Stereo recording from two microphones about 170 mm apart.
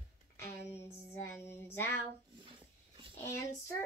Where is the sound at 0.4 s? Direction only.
15° left (ahead or behind).